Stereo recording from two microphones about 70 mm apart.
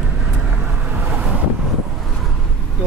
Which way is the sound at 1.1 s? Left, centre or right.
Centre.